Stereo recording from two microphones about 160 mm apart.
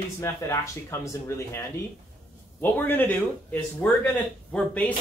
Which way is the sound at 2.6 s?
10° left (ahead or behind).